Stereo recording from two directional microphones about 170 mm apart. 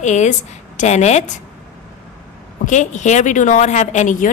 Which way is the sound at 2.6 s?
45° left (ahead or behind).